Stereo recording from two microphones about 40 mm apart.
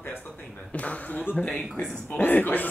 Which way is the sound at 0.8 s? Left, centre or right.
Left.